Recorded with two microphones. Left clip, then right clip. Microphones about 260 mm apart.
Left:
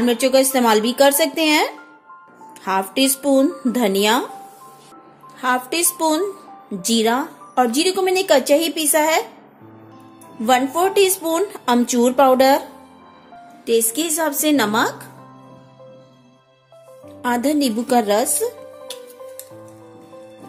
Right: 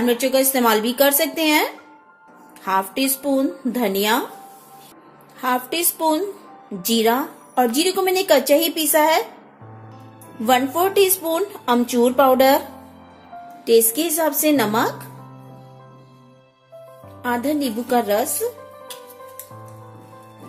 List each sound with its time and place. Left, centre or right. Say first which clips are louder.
0.0 s a woman's voice: left 2 dB; centre
5.4 s a woman's voice: left 2 dB; centre
10.4 s a woman's voice: left 1 dB; centre
13.7 s a woman's voice: right 2 dB; centre
17.2 s a woman's voice: left 3 dB; centre